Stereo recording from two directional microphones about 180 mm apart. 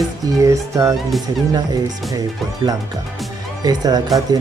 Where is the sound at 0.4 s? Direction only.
15° right (ahead or behind).